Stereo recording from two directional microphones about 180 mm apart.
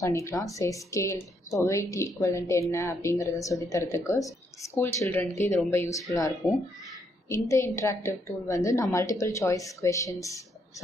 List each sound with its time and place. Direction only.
0.0 s a woman's voice: 15° left (ahead or behind)